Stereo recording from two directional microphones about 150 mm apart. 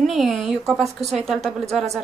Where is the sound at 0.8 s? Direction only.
45° right (ahead or behind).